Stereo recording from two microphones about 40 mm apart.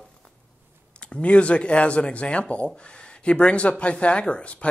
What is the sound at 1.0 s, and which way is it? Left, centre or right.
Speech, left.